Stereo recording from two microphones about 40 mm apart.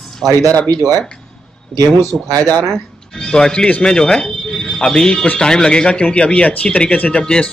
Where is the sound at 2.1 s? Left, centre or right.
Centre.